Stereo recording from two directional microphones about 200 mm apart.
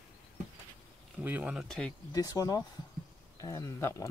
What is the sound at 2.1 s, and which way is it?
Speech, 20° left (ahead or behind).